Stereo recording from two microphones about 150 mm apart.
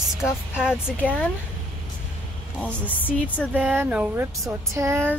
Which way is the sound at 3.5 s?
10° right (ahead or behind).